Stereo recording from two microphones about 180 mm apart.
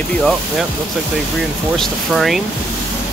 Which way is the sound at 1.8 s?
Centre (ahead or behind).